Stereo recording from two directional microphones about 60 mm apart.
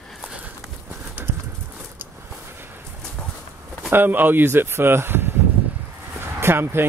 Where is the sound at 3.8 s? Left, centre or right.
Right.